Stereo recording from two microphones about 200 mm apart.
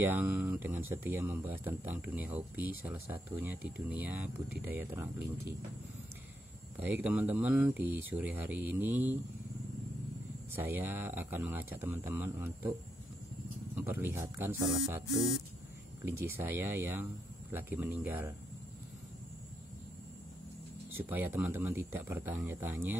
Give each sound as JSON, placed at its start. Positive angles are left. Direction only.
{"t": 0.0, "sound": "speech", "side_deg": -10}
{"t": 6.8, "sound": "speech", "side_deg": -5}
{"t": 10.5, "sound": "speech", "side_deg": -10}
{"t": 13.7, "sound": "speech", "side_deg": -10}
{"t": 16.1, "sound": "speech", "side_deg": -10}
{"t": 20.9, "sound": "speech", "side_deg": -10}